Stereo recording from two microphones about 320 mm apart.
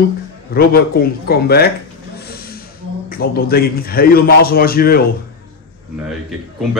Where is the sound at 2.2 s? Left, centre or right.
Left.